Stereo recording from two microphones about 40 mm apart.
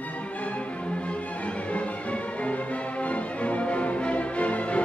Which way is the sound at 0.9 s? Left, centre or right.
Left.